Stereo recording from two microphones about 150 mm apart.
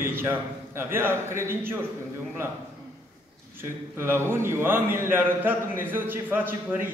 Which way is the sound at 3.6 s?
15° right (ahead or behind).